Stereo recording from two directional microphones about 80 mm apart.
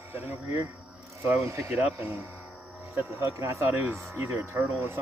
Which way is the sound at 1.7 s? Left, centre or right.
Right.